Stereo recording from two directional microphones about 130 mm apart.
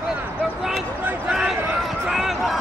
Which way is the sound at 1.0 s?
5° right (ahead or behind).